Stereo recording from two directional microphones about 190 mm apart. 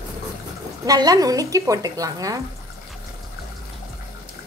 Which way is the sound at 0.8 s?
20° right (ahead or behind).